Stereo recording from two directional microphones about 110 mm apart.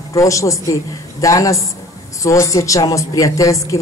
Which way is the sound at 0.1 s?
30° left (ahead or behind).